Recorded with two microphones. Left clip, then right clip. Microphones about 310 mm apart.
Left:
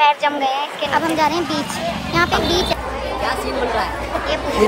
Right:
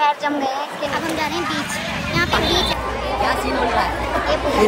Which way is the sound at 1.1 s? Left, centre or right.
Centre.